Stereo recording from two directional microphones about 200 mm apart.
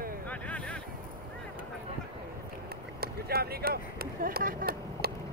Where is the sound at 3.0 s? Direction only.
50° right (ahead or behind).